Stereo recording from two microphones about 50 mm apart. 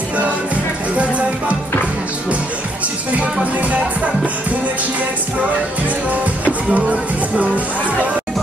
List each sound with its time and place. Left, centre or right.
0.9 s music: right
3.5 s music: right
6.7 s speech: right